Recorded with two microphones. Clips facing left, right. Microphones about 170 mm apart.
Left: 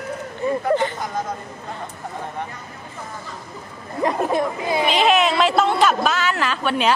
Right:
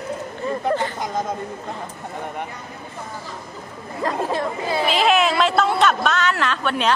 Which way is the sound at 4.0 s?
20° left (ahead or behind).